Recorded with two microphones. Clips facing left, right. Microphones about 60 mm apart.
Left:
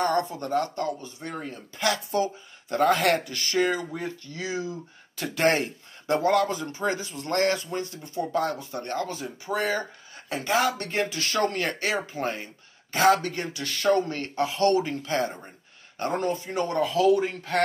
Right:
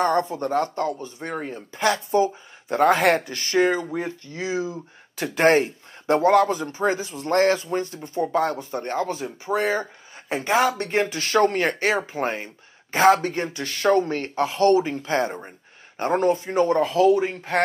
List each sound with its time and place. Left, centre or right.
0.0 s speech: right